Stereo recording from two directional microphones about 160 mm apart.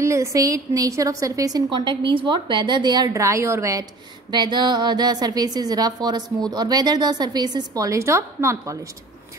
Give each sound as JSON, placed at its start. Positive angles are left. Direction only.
{"t": 0.0, "sound": "a woman's voice", "side_deg": -20}